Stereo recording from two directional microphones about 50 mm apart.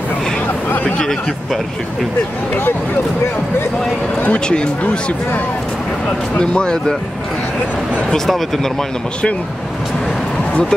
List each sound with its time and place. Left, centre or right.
0.8 s speech: centre
4.2 s speech: left
6.4 s speech: centre